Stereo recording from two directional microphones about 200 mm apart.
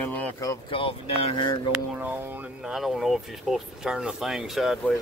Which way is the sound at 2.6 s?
Centre (ahead or behind).